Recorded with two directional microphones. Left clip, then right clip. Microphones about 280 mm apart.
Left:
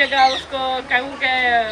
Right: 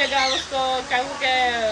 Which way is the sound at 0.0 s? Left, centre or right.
Centre.